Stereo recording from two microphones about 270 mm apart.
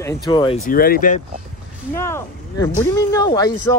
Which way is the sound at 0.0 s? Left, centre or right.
Centre.